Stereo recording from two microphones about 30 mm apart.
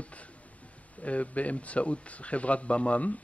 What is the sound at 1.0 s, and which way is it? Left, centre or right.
Speech, left.